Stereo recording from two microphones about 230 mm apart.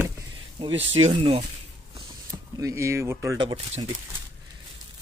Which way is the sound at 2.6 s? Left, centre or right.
Centre.